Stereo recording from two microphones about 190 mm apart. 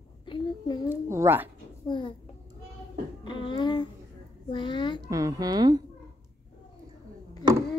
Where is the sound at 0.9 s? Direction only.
10° right (ahead or behind).